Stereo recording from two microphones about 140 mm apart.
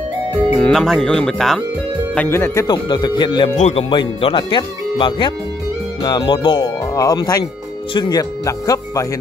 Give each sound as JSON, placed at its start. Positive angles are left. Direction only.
{"t": 0.6, "sound": "speech", "side_deg": 5}
{"t": 2.1, "sound": "speech", "side_deg": 15}
{"t": 3.5, "sound": "speech", "side_deg": 50}
{"t": 3.9, "sound": "speech", "side_deg": 35}